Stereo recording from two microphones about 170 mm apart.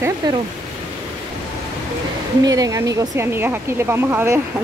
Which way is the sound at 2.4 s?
20° right (ahead or behind).